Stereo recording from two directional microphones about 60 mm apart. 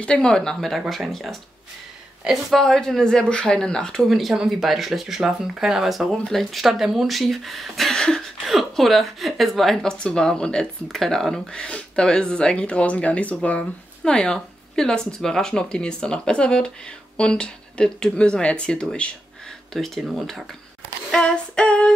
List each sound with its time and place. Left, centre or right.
0.0 s speech: centre
4.1 s speech: centre
19.7 s speech: centre
21.1 s female singing: centre